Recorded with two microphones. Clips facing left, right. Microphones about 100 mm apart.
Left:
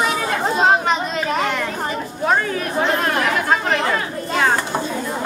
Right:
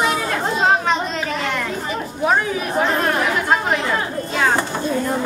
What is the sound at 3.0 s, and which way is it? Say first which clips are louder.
Chatter: even; 5° right (ahead or behind).